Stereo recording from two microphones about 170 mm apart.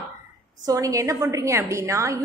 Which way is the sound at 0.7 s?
20° right (ahead or behind).